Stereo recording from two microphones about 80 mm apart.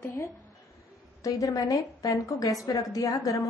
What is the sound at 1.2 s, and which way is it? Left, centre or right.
A woman's voice, left.